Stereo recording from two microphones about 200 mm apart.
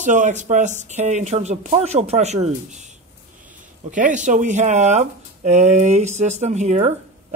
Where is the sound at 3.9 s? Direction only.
40° right (ahead or behind).